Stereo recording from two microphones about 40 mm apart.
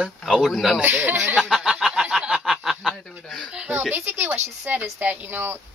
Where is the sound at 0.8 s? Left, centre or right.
Right.